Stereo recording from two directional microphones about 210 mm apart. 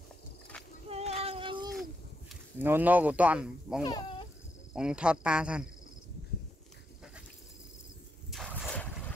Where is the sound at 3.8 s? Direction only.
20° left (ahead or behind).